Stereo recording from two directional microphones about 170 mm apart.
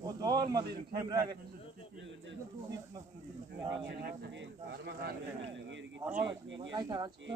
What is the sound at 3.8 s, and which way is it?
Speech, 80° right.